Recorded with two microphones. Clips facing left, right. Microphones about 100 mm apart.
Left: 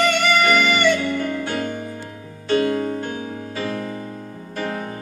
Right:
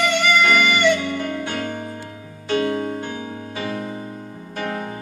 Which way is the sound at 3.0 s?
25° right (ahead or behind).